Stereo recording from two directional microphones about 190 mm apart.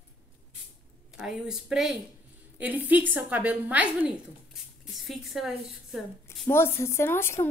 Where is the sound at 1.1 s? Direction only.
5° right (ahead or behind).